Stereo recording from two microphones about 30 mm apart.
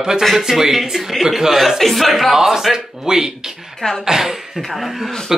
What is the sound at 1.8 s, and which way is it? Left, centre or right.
Speech, centre.